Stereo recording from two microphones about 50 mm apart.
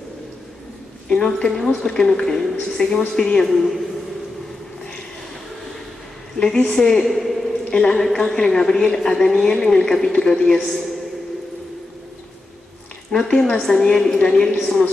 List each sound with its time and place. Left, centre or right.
1.0 s a woman's voice: centre
1.6 s a woman's voice: centre
6.7 s a woman's voice: centre
7.7 s a woman's voice: centre
13.1 s a woman's voice: centre
14.1 s a woman's voice: centre
14.5 s a woman's voice: centre